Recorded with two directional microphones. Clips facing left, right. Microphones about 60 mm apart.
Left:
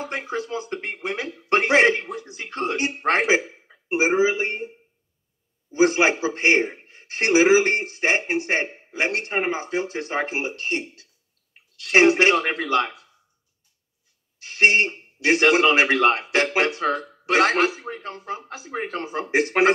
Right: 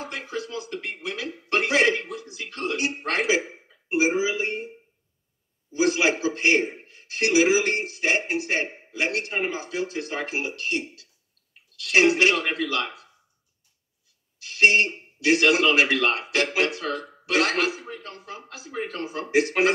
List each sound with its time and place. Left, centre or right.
0.0 s a man's voice: left
5.7 s a man's voice: left
14.4 s a man's voice: left